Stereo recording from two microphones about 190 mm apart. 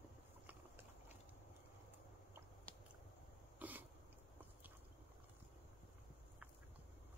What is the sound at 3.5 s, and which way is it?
Cough, 10° right (ahead or behind).